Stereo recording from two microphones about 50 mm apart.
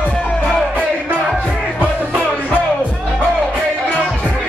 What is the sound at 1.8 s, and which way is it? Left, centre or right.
Music, right.